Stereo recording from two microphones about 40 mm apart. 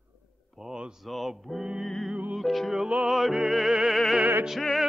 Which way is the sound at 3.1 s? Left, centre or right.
Centre.